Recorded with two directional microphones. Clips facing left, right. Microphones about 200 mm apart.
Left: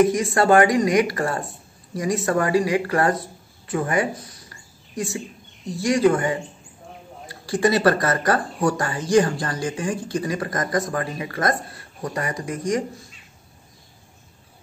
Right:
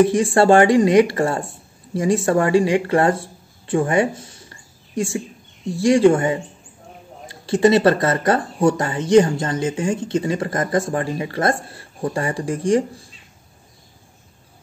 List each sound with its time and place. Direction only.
0.0 s speech: 30° right (ahead or behind)